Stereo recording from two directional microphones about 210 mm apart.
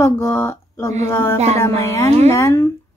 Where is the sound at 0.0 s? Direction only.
15° left (ahead or behind).